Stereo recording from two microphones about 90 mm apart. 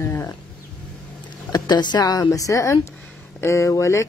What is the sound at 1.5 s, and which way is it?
Speech, 50° left (ahead or behind).